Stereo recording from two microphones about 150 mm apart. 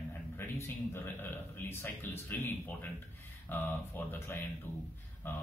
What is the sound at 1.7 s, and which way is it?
Speech, 15° left (ahead or behind).